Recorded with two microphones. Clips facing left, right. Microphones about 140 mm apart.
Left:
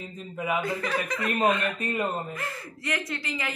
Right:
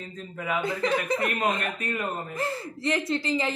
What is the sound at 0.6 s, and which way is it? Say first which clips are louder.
Speech: right 7 dB; 25° right (ahead or behind).